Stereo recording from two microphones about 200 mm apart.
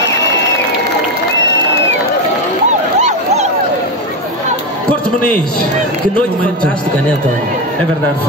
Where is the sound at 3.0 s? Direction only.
35° right (ahead or behind).